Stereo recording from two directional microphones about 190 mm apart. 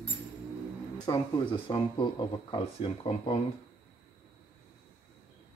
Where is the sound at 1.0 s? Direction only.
25° left (ahead or behind).